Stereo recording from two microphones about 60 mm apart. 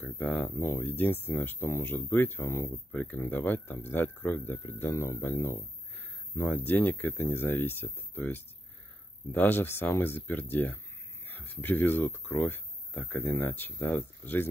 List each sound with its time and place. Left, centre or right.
0.0 s speech: left
0.6 s speech: left
2.4 s speech: left
2.9 s speech: left